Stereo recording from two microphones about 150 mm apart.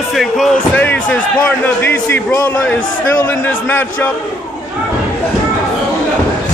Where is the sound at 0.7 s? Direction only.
10° left (ahead or behind).